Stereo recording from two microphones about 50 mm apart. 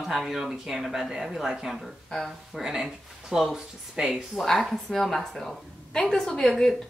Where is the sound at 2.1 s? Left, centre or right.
Centre.